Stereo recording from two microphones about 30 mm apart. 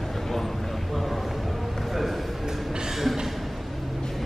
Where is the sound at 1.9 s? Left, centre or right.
Centre.